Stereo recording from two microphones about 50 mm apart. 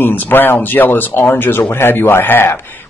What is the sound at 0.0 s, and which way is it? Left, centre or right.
Speech, left.